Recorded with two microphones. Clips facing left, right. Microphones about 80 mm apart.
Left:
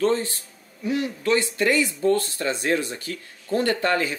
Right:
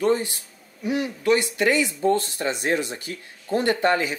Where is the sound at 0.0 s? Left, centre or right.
Centre.